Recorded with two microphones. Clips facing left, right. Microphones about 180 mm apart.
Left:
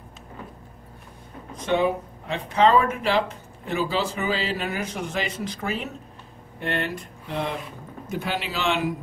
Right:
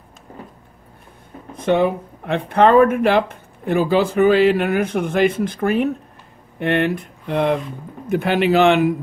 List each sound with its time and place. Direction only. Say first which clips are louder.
1.5 s speech: right 5 dB; 55° right (ahead or behind)